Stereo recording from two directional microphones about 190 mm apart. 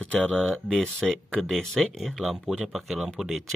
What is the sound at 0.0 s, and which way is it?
Speech, 5° left (ahead or behind).